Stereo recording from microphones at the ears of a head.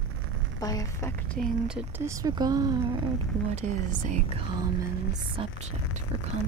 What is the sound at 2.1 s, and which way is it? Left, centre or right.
Speech, right.